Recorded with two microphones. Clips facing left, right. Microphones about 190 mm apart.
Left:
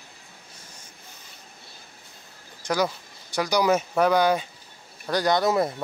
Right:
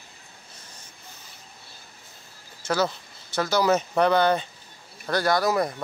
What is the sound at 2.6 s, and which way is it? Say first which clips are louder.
Speech: even; 15° left (ahead or behind).